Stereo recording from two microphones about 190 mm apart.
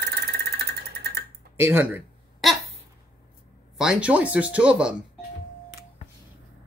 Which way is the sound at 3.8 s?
5° right (ahead or behind).